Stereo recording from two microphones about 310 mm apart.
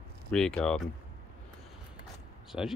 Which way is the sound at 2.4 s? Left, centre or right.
Centre.